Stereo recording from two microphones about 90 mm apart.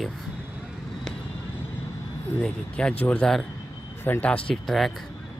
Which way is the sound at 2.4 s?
15° left (ahead or behind).